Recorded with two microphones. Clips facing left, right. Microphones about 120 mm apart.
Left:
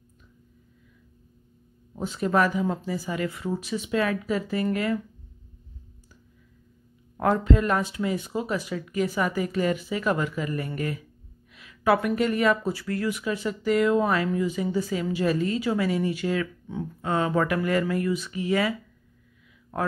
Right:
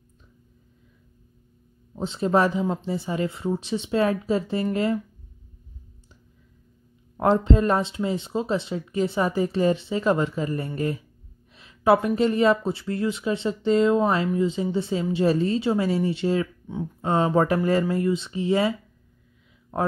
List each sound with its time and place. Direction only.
2.0 s speech: 25° right (ahead or behind)
7.2 s speech: 25° right (ahead or behind)
11.5 s a sound: 30° right (ahead or behind)
12.2 s speech: 30° right (ahead or behind)